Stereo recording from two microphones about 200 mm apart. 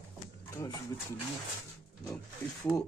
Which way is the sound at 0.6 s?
15° left (ahead or behind).